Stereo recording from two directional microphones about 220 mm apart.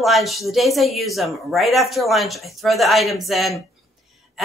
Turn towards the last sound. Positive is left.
turn(degrees=0)  # may be behind; listen again after turning